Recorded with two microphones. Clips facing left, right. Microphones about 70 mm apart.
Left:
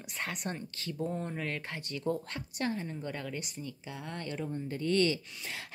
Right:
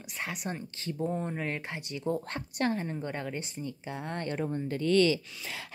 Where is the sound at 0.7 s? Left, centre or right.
Right.